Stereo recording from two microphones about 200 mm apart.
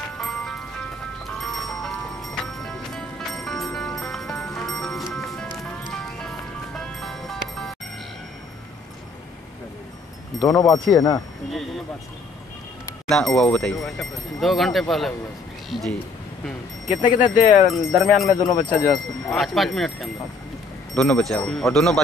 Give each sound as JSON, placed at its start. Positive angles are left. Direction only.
{"t": 0.2, "sound": "music", "side_deg": 0}
{"t": 10.5, "sound": "speech", "side_deg": 20}
{"t": 13.1, "sound": "speech", "side_deg": 0}
{"t": 16.9, "sound": "speech", "side_deg": 40}
{"t": 17.6, "sound": "speech", "side_deg": 0}
{"t": 18.3, "sound": "speech", "side_deg": 20}
{"t": 19.3, "sound": "speech", "side_deg": 0}